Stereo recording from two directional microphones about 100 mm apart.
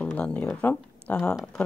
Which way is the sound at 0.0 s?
10° left (ahead or behind).